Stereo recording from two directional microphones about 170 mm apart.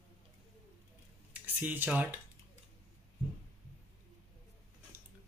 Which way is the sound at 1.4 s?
10° right (ahead or behind).